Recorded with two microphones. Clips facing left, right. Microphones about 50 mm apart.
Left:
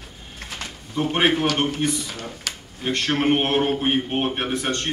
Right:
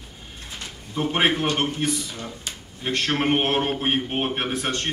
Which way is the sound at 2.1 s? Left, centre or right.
Left.